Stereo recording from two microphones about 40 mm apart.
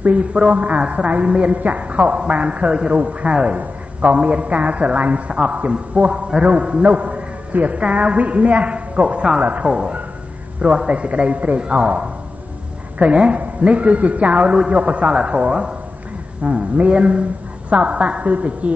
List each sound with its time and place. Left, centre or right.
0.0 s a man's voice: right
9.7 s a woman's voice: right